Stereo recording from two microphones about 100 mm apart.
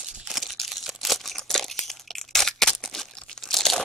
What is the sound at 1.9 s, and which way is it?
Crunch, 5° left (ahead or behind).